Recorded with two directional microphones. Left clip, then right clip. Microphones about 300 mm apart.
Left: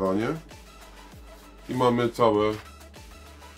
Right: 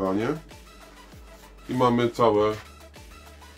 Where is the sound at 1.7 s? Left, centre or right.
Centre.